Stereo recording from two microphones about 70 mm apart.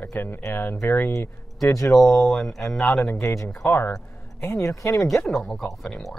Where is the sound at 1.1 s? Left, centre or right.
Left.